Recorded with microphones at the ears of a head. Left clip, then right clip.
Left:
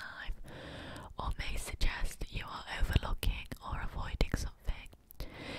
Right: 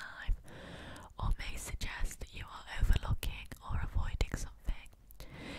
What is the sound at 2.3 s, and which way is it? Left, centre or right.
Whispering, left.